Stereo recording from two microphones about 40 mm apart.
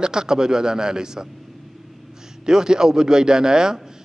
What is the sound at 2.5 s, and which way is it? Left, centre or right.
Speech, centre.